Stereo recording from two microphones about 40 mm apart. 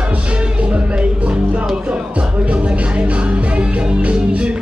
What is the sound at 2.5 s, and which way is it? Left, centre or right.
Music, right.